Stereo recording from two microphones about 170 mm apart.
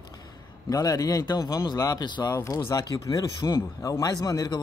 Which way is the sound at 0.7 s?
20° left (ahead or behind).